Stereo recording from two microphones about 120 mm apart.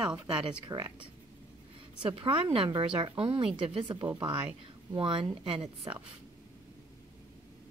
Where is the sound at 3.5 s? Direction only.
50° right (ahead or behind).